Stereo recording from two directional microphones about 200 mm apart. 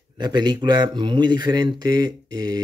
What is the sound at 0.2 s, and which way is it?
Speech, 20° right (ahead or behind).